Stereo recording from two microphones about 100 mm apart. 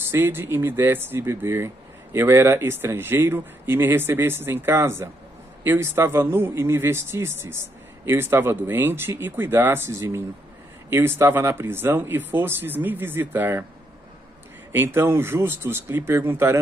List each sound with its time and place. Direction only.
0.1 s a man's voice: 20° right (ahead or behind)
14.7 s a man's voice: 20° right (ahead or behind)